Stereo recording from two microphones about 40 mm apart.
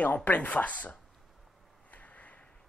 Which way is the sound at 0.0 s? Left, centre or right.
Left.